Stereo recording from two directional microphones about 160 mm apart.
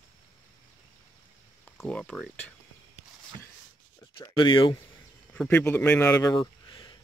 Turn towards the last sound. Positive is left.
turn(degrees=25)  # may be behind; listen again after turning